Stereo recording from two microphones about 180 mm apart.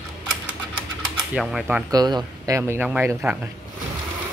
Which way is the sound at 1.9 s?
25° right (ahead or behind).